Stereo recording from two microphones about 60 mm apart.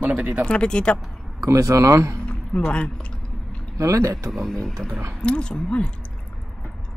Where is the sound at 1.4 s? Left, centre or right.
Right.